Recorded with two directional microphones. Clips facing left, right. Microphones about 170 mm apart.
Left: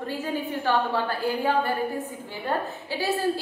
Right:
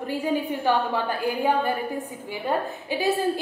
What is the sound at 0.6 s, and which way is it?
A woman's voice, 15° right (ahead or behind).